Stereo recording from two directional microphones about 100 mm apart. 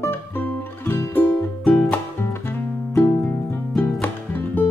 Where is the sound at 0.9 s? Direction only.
25° left (ahead or behind).